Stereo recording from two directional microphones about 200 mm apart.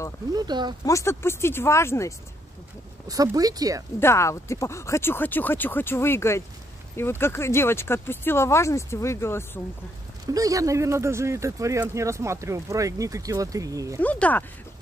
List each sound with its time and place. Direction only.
0.3 s speech: 20° right (ahead or behind)
0.8 s speech: 15° left (ahead or behind)
3.1 s speech: 20° right (ahead or behind)
4.0 s speech: 15° left (ahead or behind)
10.2 s speech: 15° right (ahead or behind)
14.0 s speech: 5° left (ahead or behind)